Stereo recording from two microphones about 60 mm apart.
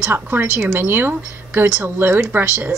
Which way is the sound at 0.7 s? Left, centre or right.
Right.